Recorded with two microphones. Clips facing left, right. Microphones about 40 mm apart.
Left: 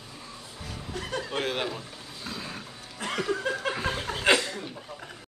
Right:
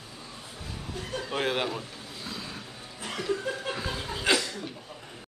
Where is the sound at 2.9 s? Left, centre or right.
Left.